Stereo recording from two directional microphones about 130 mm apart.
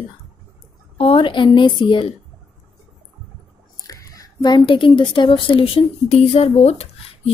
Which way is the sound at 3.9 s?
25° left (ahead or behind).